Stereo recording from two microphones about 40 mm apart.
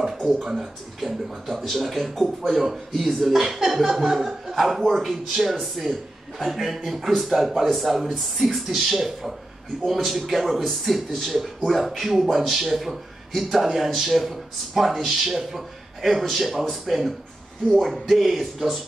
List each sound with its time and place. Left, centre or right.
0.2 s speech: centre